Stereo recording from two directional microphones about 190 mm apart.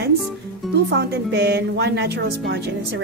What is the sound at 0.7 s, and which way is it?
A woman's voice, 65° right (ahead or behind).